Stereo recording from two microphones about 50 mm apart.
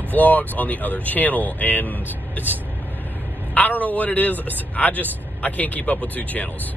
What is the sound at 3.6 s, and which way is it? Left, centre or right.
Speech, left.